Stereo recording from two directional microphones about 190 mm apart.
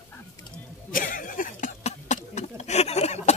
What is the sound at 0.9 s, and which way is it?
Goat, 45° left (ahead or behind).